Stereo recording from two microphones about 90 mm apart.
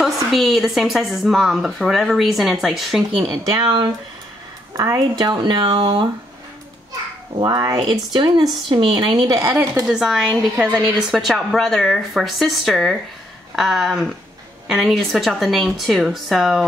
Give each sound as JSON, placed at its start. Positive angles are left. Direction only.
{"t": 0.0, "sound": "speech", "side_deg": 0}
{"t": 3.3, "sound": "speech", "side_deg": -50}
{"t": 5.1, "sound": "speech", "side_deg": -50}
{"t": 7.3, "sound": "speech", "side_deg": -50}
{"t": 7.8, "sound": "speech", "side_deg": -55}
{"t": 9.3, "sound": "speech", "side_deg": -30}
{"t": 9.6, "sound": "speech", "side_deg": -10}